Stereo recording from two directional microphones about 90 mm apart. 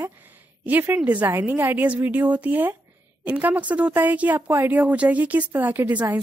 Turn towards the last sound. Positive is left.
turn(degrees=-20)  # may be behind; listen again after turning